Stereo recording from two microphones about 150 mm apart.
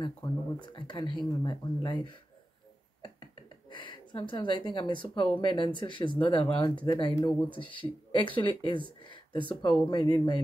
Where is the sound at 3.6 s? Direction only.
30° left (ahead or behind).